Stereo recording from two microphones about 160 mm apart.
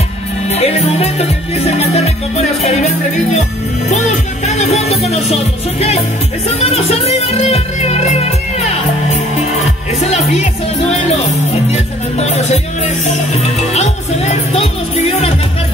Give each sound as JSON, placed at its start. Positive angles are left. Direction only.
{"t": 0.5, "sound": "music", "side_deg": 40}